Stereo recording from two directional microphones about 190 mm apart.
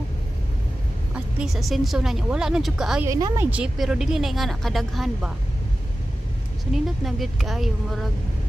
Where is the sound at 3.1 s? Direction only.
15° right (ahead or behind).